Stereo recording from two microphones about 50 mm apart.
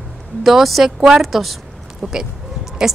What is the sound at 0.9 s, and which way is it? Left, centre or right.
Speech, centre.